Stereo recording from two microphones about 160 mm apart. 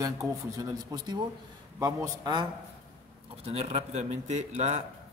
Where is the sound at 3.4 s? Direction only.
40° right (ahead or behind).